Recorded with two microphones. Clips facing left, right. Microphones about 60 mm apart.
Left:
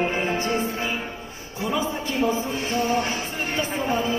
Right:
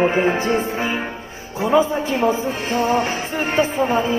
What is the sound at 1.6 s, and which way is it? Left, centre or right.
Music, right.